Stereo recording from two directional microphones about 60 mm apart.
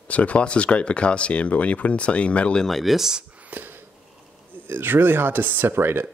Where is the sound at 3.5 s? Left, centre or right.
Right.